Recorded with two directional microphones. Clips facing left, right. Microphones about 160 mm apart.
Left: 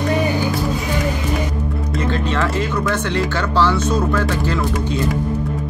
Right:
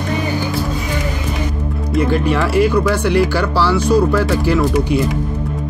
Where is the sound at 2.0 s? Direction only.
10° right (ahead or behind).